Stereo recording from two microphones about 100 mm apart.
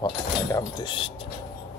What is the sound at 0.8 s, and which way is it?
Speech, 60° left (ahead or behind).